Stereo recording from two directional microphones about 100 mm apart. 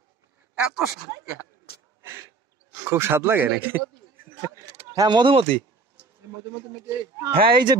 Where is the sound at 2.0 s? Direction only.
25° right (ahead or behind).